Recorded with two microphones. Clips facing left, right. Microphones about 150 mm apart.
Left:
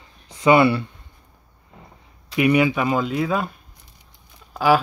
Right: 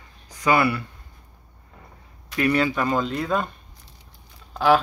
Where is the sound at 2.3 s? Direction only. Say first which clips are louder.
Left 4 dB; 15° left (ahead or behind).